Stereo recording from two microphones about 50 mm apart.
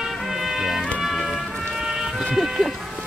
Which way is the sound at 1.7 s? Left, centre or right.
Centre.